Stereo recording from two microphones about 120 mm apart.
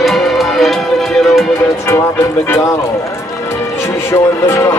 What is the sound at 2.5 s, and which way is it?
Run, 25° left (ahead or behind).